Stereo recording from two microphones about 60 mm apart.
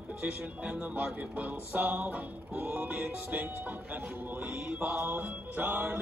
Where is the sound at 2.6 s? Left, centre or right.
Right.